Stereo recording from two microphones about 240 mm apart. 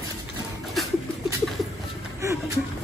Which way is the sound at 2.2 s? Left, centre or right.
Centre.